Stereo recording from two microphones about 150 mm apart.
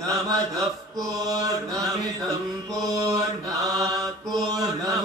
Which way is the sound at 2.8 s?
20° right (ahead or behind).